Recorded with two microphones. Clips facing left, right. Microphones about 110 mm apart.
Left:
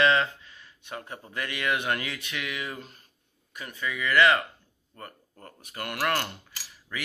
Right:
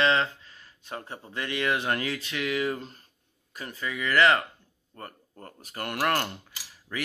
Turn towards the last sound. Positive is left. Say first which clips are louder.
# right 3 dB
turn(degrees=-35)  # may be behind; listen again after turning